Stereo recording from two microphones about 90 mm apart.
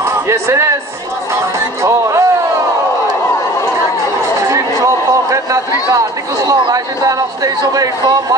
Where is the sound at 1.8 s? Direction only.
35° right (ahead or behind).